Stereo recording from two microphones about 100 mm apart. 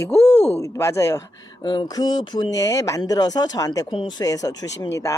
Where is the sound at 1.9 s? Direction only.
45° left (ahead or behind).